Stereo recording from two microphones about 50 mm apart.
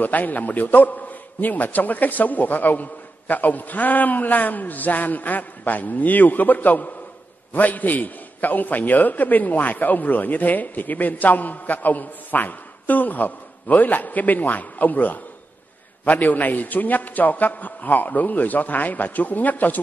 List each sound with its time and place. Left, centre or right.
0.0 s a man's voice: left